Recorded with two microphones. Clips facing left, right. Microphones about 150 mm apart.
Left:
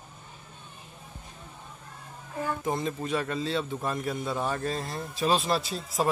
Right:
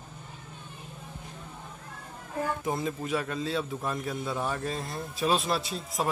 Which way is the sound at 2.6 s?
5° right (ahead or behind).